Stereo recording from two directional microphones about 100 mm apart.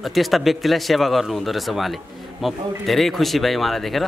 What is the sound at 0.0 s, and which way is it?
Speech, centre (ahead or behind).